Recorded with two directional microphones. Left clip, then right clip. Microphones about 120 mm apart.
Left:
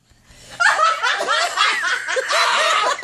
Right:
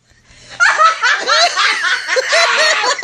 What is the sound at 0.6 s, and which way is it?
Snicker, 10° right (ahead or behind).